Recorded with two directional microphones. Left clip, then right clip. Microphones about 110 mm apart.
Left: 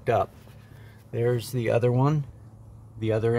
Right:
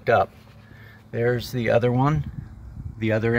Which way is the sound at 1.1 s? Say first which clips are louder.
Right 3 dB; 5° left (ahead or behind).